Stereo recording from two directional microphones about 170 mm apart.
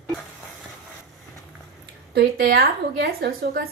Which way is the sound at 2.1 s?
65° right (ahead or behind).